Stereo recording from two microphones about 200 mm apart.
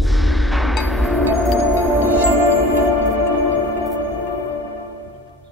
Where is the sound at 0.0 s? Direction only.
Centre (ahead or behind).